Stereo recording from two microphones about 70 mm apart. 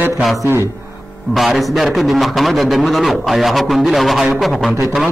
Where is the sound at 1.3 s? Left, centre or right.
Centre.